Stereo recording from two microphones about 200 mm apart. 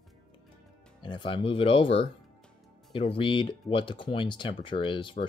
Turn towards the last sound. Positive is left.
turn(degrees=25)  # may be behind; listen again after turning